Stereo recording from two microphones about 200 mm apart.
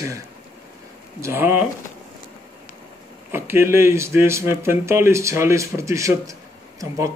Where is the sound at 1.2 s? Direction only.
10° right (ahead or behind).